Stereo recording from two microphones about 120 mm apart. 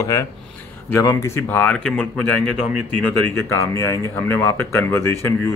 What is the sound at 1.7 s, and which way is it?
Speech, 5° left (ahead or behind).